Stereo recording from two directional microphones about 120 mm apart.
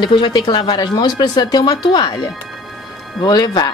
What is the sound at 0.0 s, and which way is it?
Speech, 35° left (ahead or behind).